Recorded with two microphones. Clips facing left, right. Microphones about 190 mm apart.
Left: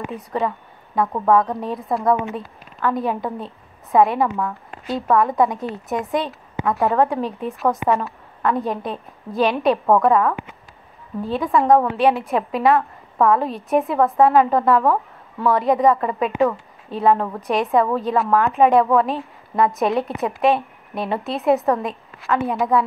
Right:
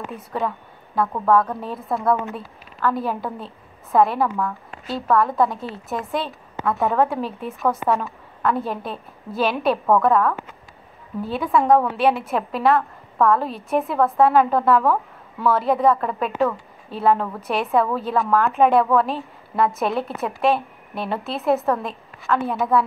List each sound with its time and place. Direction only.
0.1 s speech: centre (ahead or behind)
1.0 s a woman's voice: 15° left (ahead or behind)
1.6 s speech: centre (ahead or behind)
2.0 s a woman's voice: 15° left (ahead or behind)
2.3 s a woman's voice: 5° right (ahead or behind)
5.3 s a woman's voice: 20° left (ahead or behind)
6.1 s a sound: 15° left (ahead or behind)
6.7 s speech: centre (ahead or behind)
7.6 s a woman's voice: 15° left (ahead or behind)
7.9 s a woman's voice: centre (ahead or behind)